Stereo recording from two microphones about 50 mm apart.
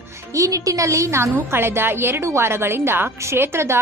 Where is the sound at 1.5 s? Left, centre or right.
Right.